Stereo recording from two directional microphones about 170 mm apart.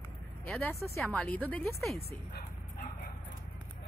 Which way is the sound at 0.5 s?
15° left (ahead or behind).